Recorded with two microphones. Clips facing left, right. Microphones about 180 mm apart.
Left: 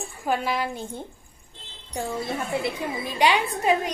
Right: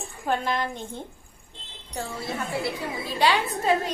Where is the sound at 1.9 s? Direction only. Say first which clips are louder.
Left 3 dB; 20° left (ahead or behind).